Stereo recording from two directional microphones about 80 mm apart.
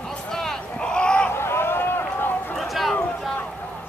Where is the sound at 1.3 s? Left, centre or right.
Left.